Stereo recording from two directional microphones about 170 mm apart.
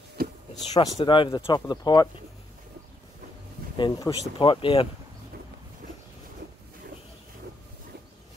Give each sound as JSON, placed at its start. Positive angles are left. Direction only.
{"t": 0.7, "sound": "speech", "side_deg": 30}
{"t": 3.7, "sound": "speech", "side_deg": 25}